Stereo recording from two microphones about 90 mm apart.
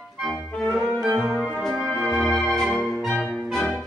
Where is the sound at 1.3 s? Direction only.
5° right (ahead or behind).